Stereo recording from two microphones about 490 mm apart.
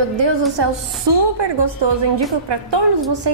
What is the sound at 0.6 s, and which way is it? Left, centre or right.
A woman's voice, right.